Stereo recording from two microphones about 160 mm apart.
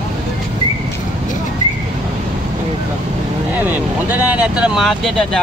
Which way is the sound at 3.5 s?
10° right (ahead or behind).